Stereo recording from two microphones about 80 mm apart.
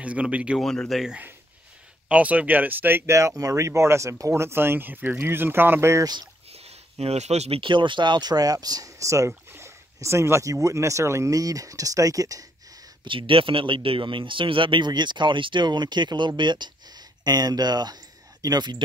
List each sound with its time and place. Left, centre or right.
0.0 s speech: centre
0.6 s speech: centre
2.0 s speech: centre
3.1 s speech: right
7.6 s speech: right
13.0 s a man's voice: right